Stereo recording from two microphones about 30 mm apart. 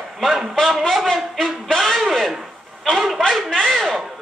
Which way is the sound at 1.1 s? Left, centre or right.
Centre.